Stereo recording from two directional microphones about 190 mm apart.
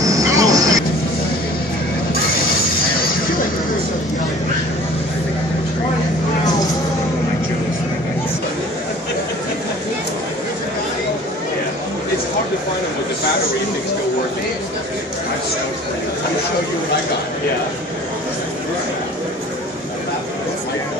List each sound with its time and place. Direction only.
0.0 s vehicle: 15° right (ahead or behind)